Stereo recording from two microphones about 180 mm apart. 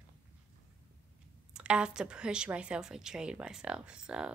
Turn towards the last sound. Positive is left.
turn(degrees=-5)  # may be behind; listen again after turning